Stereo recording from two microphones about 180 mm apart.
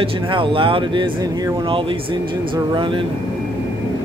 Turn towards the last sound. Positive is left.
turn(degrees=-25)  # may be behind; listen again after turning